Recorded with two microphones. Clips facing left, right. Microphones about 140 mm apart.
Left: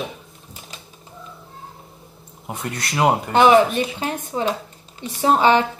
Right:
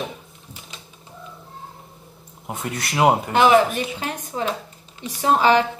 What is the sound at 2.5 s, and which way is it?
Speech, centre (ahead or behind).